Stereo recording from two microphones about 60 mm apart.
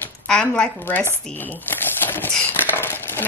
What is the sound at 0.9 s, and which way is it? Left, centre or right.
Speech, left.